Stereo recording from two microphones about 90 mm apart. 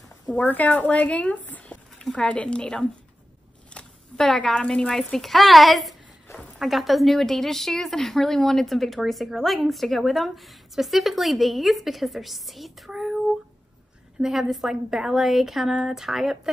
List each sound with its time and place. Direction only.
0.3 s a woman's voice: 15° left (ahead or behind); by 16.3 s 5° right (ahead or behind)